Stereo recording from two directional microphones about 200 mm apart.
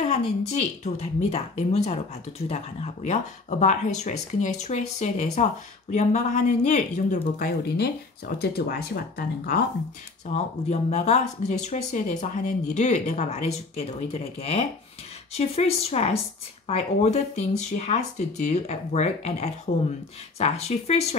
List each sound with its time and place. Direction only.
0.0 s speech: 35° left (ahead or behind); by 9.0 s 50° left (ahead or behind)
10.2 s speech: 35° left (ahead or behind)